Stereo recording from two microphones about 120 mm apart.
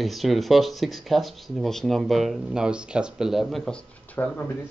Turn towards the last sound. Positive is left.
turn(degrees=20)  # may be behind; listen again after turning